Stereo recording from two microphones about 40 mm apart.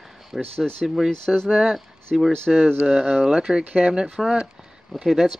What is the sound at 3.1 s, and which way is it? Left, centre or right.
Speech, centre.